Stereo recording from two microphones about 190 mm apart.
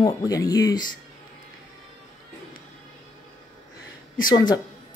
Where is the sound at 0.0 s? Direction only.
20° left (ahead or behind).